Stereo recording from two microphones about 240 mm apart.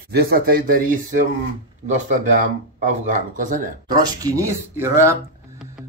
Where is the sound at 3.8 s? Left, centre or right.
Centre.